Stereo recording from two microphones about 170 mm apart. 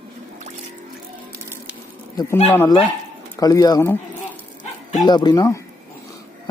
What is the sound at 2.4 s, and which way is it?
Speech, 15° left (ahead or behind).